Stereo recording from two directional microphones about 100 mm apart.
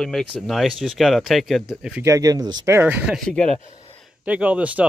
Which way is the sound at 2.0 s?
35° right (ahead or behind).